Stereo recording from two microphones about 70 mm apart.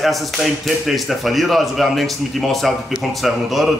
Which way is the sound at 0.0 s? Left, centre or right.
Centre.